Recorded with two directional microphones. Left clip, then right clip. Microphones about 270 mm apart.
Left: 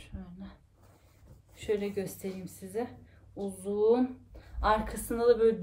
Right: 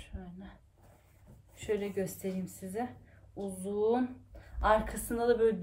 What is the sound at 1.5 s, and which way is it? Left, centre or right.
Speech, centre.